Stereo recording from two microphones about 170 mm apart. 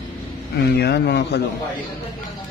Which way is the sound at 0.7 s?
75° left (ahead or behind).